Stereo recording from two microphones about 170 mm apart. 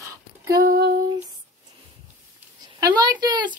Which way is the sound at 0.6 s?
60° right (ahead or behind).